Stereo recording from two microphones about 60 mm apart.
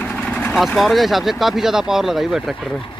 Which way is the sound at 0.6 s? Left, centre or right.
Centre.